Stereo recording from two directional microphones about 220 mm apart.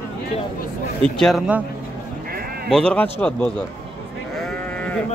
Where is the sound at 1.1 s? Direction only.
Centre (ahead or behind).